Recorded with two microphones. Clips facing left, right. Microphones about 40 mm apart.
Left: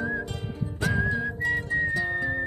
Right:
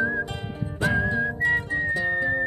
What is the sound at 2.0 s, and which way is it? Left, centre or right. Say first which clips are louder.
Music: right 4 dB; centre.